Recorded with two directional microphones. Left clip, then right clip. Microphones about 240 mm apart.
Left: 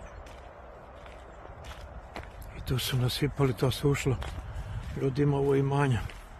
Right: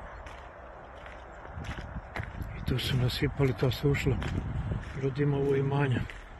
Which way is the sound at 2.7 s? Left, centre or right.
Centre.